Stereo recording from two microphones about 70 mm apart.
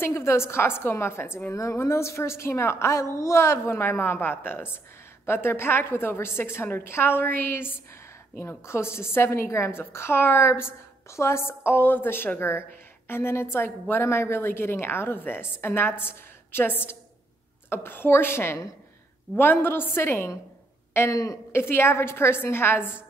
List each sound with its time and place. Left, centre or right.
0.0 s a woman's voice: left
1.5 s a woman's voice: left
21.1 s speech: left
21.5 s a woman's voice: left